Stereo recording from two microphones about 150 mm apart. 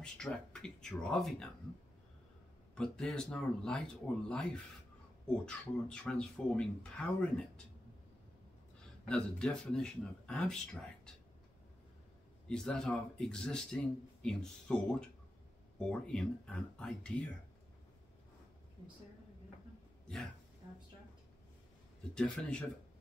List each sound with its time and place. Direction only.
0.0 s speech: 5° left (ahead or behind)
2.7 s speech: 5° left (ahead or behind)
9.0 s speech: 5° left (ahead or behind)
12.4 s speech: 5° left (ahead or behind)
20.6 s a sound: 25° right (ahead or behind)
22.1 s speech: 5° left (ahead or behind)